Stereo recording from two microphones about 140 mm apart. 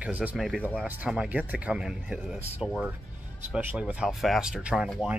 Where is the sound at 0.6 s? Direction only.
10° right (ahead or behind).